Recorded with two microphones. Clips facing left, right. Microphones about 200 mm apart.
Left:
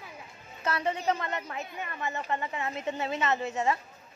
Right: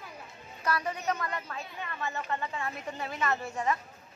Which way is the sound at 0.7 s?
25° left (ahead or behind).